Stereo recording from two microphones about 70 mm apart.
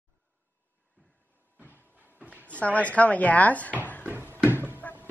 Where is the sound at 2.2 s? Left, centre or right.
Centre.